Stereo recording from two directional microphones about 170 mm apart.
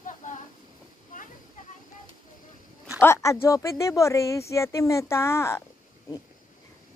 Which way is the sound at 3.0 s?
15° left (ahead or behind).